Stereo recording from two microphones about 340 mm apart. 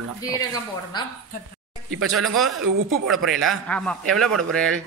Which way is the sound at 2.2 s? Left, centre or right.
Centre.